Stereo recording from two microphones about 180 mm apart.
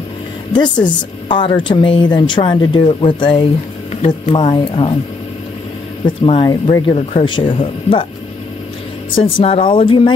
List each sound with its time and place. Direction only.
0.8 s speech: 25° left (ahead or behind)
3.9 s speech: 40° left (ahead or behind)
6.0 s speech: 30° left (ahead or behind)
9.1 s speech: 30° left (ahead or behind)